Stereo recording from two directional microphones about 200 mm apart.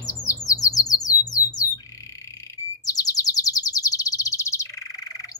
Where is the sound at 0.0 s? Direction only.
15° left (ahead or behind).